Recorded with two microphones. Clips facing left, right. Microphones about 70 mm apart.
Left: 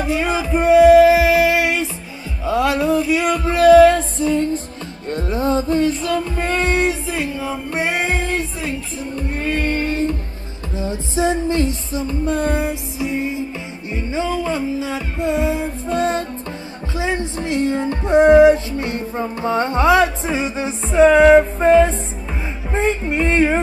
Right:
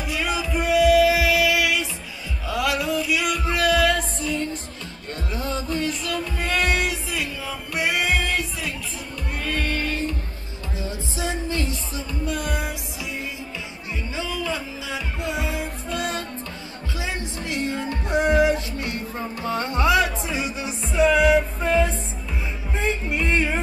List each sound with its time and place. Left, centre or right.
0.0 s music: left